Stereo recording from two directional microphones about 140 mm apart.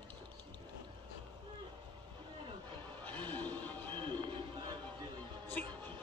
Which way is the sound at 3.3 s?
10° left (ahead or behind).